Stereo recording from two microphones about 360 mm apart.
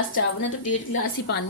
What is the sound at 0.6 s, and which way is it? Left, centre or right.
Speech, left.